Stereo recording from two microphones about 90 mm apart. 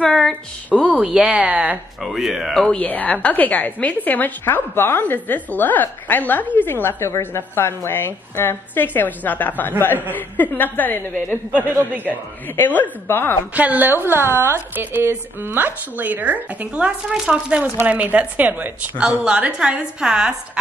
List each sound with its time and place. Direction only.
0.0 s a sound: 5° left (ahead or behind)
0.9 s a woman's voice: 10° right (ahead or behind)
2.0 s speech: centre (ahead or behind)
2.8 s a woman's voice: 20° left (ahead or behind)
12.5 s a woman's voice: 20° left (ahead or behind)
13.6 s a woman's voice: 20° right (ahead or behind)